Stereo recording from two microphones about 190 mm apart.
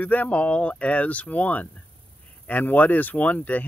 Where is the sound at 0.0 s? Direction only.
10° left (ahead or behind).